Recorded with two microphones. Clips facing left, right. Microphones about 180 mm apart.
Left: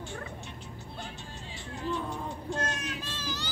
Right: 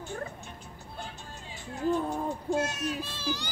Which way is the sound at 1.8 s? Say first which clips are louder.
Right 6 dB; 45° right (ahead or behind).